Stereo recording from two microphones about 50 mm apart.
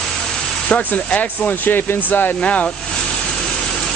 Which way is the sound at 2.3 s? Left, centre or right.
Left.